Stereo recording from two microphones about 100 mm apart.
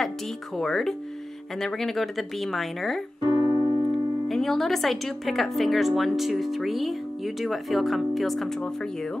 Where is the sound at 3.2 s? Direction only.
50° left (ahead or behind).